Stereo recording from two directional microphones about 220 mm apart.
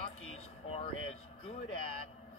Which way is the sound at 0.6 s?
25° left (ahead or behind).